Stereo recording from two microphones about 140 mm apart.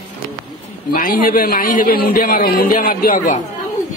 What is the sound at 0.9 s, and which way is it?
A man's voice, 90° left.